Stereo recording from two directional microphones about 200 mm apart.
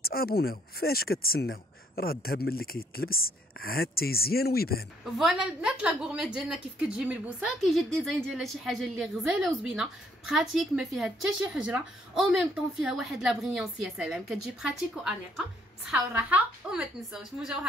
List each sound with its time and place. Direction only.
0.0 s speech: 50° left (ahead or behind)
5.1 s a woman's voice: 5° right (ahead or behind)